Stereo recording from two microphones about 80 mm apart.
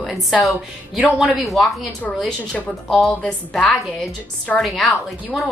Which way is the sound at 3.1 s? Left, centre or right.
Centre.